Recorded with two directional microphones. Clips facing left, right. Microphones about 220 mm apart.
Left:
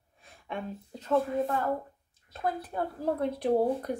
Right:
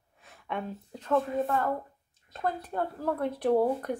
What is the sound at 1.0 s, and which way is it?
Speech, 5° left (ahead or behind).